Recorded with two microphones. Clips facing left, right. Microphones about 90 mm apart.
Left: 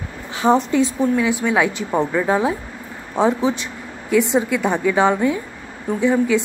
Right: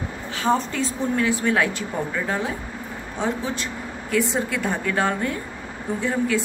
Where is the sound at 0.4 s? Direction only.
20° left (ahead or behind).